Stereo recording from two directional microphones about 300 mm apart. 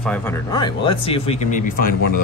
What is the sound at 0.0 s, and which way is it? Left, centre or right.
Speech, centre.